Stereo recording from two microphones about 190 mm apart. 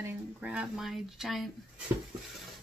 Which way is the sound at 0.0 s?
5° right (ahead or behind).